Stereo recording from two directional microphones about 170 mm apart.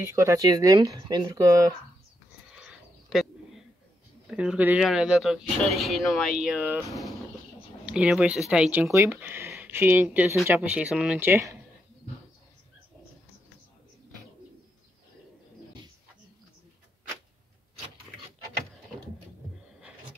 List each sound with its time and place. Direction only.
0.0 s speech: 15° right (ahead or behind)
2.6 s a sound: centre (ahead or behind)
4.3 s speech: 5° right (ahead or behind)
7.8 s speech: 5° right (ahead or behind)